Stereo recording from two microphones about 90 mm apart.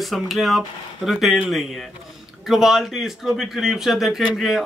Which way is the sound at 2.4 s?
5° right (ahead or behind).